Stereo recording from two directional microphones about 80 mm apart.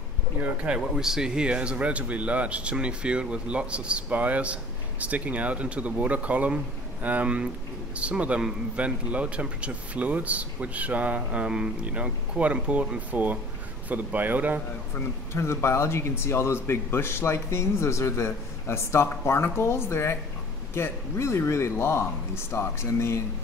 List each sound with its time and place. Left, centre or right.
0.4 s speech: centre
15.3 s speech: left